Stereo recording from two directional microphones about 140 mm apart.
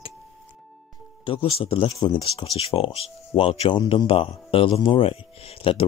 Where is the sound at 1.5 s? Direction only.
40° left (ahead or behind).